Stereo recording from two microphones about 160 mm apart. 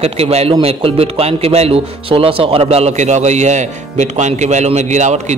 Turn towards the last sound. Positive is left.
turn(degrees=-45)  # may be behind; listen again after turning